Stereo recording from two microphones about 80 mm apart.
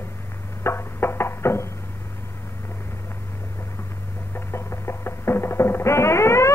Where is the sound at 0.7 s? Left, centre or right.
Left.